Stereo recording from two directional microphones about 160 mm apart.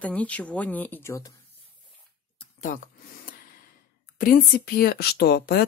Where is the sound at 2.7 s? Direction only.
55° left (ahead or behind).